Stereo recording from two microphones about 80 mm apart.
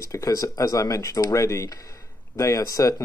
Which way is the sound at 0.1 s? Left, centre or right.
Left.